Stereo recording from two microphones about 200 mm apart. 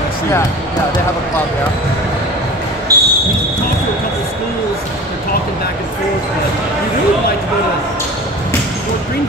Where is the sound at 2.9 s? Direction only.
15° right (ahead or behind).